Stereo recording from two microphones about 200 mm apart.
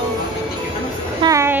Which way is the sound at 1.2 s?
15° right (ahead or behind).